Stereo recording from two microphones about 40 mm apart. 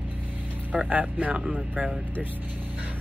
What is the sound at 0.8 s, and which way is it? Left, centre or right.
Speech, right.